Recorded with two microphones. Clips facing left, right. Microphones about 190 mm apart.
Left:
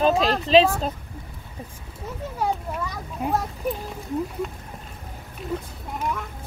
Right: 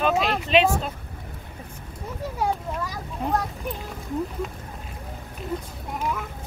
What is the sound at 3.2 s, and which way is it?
Speech, 5° left (ahead or behind).